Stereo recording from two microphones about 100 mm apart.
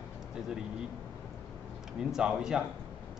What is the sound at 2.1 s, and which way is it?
Speech, 5° right (ahead or behind).